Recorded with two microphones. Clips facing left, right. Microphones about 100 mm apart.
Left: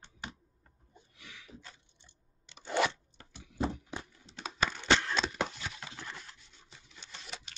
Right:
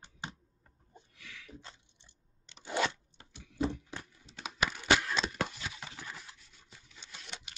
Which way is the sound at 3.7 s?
15° left (ahead or behind).